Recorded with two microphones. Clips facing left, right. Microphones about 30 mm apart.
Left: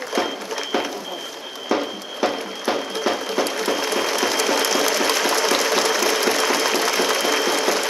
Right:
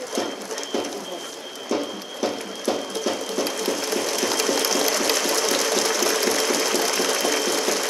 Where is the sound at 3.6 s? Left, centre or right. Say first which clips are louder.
Left 3 dB; left.